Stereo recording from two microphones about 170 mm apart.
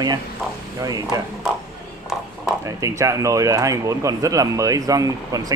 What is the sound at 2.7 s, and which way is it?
Speech, 20° right (ahead or behind).